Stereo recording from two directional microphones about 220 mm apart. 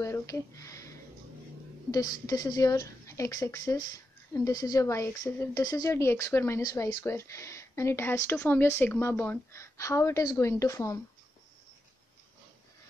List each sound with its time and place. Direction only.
0.0 s speech: 15° left (ahead or behind)